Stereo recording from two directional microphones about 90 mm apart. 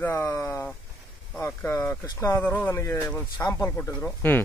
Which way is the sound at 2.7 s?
35° left (ahead or behind).